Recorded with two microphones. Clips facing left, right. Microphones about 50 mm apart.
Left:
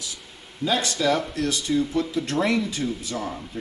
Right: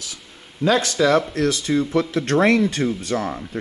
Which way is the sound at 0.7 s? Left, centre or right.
Right.